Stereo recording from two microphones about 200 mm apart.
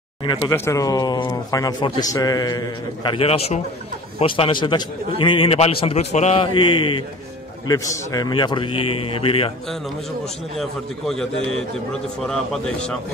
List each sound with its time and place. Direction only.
0.2 s speech: 20° left (ahead or behind)
10.6 s a man's voice: centre (ahead or behind)